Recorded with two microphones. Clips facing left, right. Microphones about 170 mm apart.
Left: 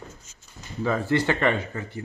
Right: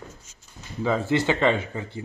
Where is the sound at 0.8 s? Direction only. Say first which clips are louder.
Right 1 dB; 20° right (ahead or behind).